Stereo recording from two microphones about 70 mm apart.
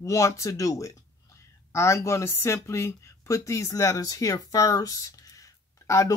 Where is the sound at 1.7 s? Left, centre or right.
Left.